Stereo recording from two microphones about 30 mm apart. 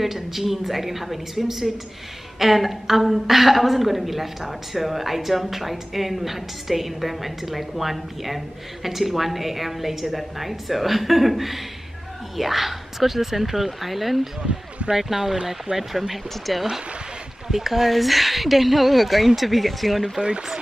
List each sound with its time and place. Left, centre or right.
0.0 s a woman's voice: centre
17.5 s a woman's voice: centre
20.2 s speech: right